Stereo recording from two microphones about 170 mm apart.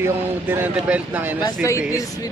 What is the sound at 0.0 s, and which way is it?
A man's voice, 10° right (ahead or behind).